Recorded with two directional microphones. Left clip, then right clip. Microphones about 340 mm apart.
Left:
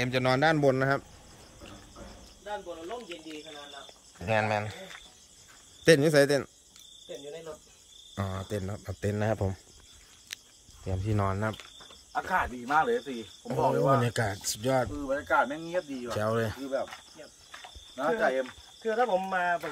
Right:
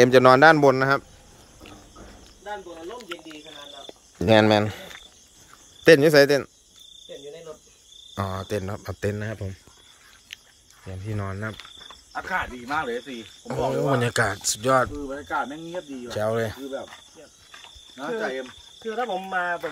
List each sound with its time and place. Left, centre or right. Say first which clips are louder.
0.0 s a man's voice: right 12 dB; centre
4.3 s speech: right 10 dB; centre
5.9 s speech: right 7 dB; centre
8.1 s speech: right 7 dB; centre
10.9 s speech: left 3 dB; centre
12.2 s speech: right 1 dB; centre
13.5 s speech: right 1 dB; centre
17.9 s speech: left 2 dB; centre